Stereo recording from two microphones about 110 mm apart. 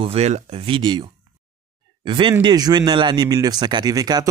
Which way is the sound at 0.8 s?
45° right (ahead or behind).